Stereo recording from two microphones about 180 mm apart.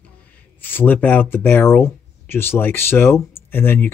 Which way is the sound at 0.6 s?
10° left (ahead or behind).